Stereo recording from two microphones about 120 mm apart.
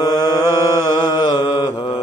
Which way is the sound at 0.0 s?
35° left (ahead or behind).